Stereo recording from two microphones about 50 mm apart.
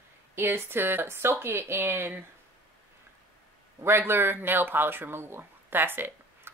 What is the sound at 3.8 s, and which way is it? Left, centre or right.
Speech, right.